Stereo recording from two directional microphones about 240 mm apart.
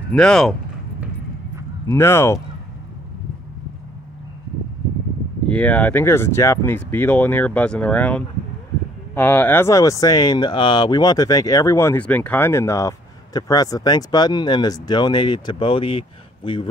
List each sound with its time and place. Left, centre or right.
0.1 s speech: centre
1.9 s speech: centre
5.5 s speech: centre; by 16.6 s left